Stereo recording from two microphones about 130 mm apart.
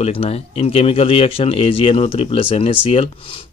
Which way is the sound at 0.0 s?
50° left (ahead or behind).